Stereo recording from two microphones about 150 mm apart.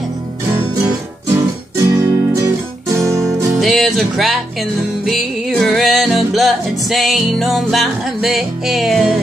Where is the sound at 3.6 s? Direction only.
Centre (ahead or behind).